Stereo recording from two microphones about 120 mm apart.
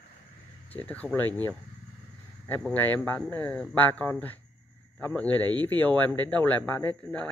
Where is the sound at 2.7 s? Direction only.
15° left (ahead or behind).